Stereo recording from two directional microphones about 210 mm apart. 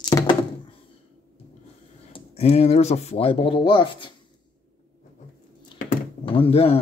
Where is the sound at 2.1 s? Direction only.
30° left (ahead or behind).